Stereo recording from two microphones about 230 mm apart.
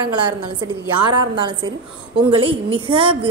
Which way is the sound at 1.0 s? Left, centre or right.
Right.